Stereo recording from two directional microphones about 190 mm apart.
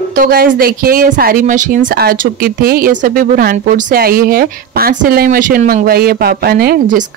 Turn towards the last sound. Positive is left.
turn(degrees=-50)  # may be behind; listen again after turning